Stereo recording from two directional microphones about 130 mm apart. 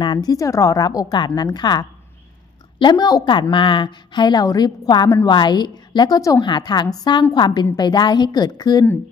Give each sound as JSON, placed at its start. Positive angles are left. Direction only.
{"t": 0.0, "sound": "a woman's voice", "side_deg": 35}